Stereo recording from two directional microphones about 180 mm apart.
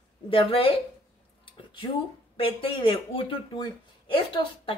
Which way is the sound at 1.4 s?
30° left (ahead or behind).